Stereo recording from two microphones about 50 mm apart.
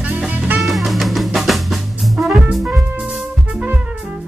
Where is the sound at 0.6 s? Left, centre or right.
Centre.